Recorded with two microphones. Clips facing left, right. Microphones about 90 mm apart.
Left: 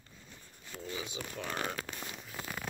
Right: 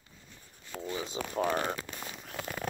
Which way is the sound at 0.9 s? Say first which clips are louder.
Right 6 dB; 35° right (ahead or behind).